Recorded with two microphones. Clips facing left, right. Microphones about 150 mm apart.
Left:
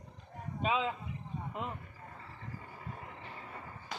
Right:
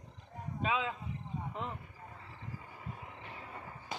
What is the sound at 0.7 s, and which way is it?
Speech, 25° left (ahead or behind).